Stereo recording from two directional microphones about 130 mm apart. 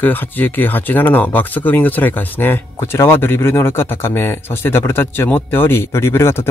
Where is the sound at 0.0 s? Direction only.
15° left (ahead or behind).